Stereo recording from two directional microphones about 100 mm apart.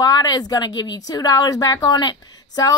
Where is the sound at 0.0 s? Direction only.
40° left (ahead or behind).